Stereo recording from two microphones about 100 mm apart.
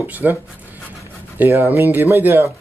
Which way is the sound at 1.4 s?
20° right (ahead or behind).